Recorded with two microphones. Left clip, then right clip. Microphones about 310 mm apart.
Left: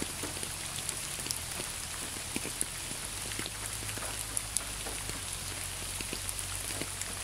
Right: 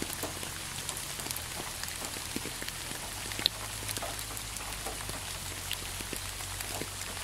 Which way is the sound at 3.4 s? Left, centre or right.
Right.